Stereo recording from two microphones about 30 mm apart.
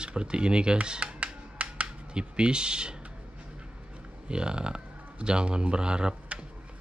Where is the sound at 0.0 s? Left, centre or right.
Right.